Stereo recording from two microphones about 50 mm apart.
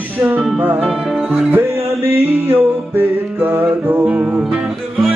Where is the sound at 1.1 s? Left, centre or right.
Centre.